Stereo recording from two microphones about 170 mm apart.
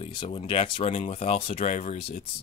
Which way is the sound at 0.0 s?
35° left (ahead or behind).